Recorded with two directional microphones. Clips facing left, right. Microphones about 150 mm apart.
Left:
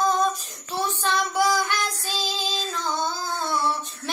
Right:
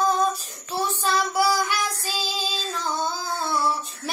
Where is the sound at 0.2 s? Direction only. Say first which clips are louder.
Even; 10° right (ahead or behind).